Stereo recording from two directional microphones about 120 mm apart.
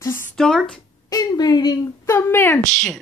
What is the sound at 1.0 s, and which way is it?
Speech, 30° left (ahead or behind).